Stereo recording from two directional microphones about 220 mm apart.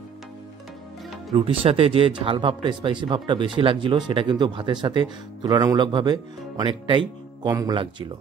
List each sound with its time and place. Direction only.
1.3 s speech: 25° right (ahead or behind)